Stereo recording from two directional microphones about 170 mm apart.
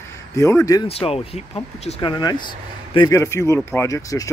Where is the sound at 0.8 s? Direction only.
35° left (ahead or behind).